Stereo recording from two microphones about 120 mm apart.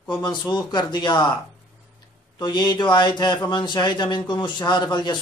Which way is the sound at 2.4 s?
35° left (ahead or behind).